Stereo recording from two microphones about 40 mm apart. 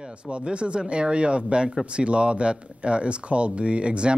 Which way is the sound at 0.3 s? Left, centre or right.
Right.